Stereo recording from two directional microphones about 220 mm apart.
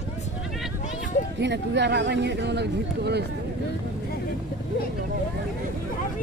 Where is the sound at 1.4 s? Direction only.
55° right (ahead or behind).